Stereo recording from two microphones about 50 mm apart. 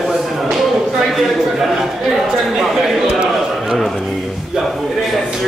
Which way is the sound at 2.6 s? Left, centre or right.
Centre.